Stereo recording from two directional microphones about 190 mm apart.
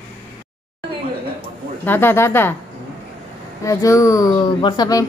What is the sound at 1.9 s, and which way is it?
Speech, 10° left (ahead or behind).